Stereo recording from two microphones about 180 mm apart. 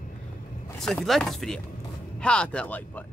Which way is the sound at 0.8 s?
Centre (ahead or behind).